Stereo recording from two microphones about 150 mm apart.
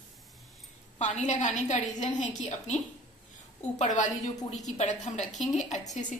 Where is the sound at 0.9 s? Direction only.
55° left (ahead or behind).